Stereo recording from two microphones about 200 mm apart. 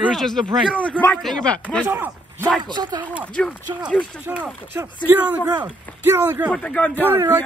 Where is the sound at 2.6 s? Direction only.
20° right (ahead or behind).